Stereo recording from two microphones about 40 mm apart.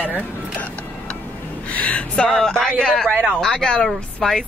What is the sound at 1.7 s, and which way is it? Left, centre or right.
Speech, left.